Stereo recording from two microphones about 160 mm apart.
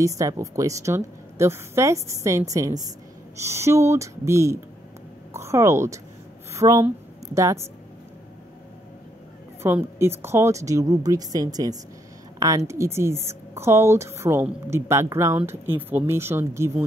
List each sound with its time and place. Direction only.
0.0 s a woman's voice: 20° right (ahead or behind)
9.6 s a woman's voice: 15° right (ahead or behind)